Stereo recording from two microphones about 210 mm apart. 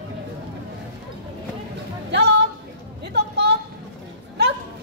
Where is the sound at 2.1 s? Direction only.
50° right (ahead or behind).